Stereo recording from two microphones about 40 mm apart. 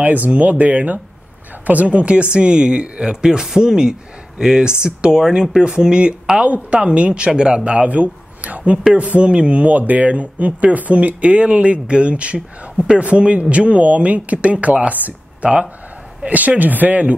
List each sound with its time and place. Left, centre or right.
0.0 s speech: right
12.4 s speech: centre
13.0 s speech: right
16.3 s speech: right